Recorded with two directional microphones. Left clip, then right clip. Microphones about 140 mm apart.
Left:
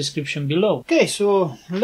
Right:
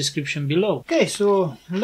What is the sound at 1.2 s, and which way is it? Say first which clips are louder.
Speech: left 1 dB; 50° left (ahead or behind).